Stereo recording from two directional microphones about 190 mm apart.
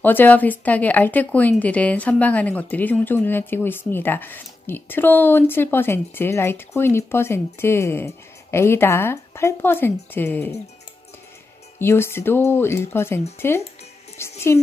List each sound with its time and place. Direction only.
0.0 s a woman's voice: 10° left (ahead or behind)
11.8 s a woman's voice: 10° left (ahead or behind)